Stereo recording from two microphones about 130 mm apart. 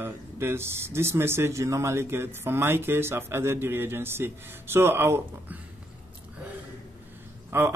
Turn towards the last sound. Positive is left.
turn(degrees=-20)  # may be behind; listen again after turning